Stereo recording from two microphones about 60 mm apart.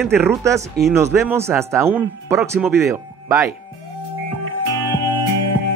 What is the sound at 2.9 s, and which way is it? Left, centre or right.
Speech, right.